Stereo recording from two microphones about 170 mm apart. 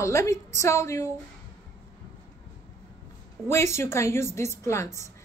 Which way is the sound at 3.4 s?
15° left (ahead or behind).